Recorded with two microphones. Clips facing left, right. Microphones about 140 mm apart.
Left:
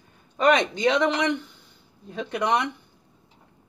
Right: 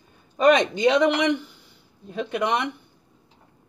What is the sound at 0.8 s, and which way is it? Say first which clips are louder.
Speech: right 4 dB; 15° right (ahead or behind).